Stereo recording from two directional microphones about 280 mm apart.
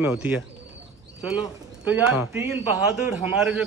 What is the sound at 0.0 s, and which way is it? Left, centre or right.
Speech, centre.